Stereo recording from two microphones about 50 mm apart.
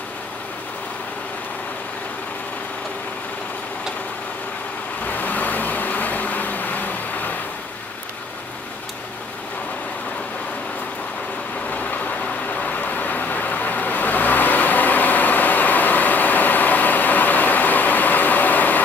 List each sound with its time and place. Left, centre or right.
5.0 s vehicle: left
11.7 s vehicle: left